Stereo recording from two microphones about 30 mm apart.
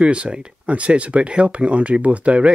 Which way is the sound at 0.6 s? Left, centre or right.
Right.